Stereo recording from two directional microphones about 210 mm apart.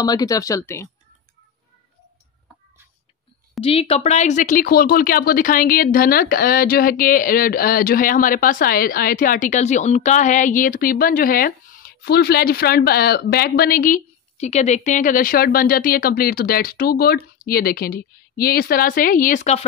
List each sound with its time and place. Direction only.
0.0 s speech: 20° left (ahead or behind)
3.6 s speech: 25° left (ahead or behind)